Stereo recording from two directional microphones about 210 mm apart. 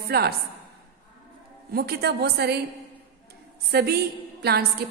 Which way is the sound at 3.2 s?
50° right (ahead or behind).